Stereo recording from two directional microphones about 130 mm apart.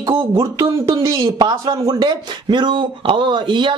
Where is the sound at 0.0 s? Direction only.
35° right (ahead or behind).